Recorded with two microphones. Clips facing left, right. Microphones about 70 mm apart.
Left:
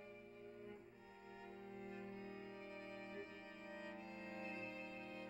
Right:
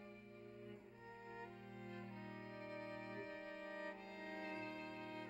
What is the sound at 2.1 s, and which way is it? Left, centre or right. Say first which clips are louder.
Music: even; right.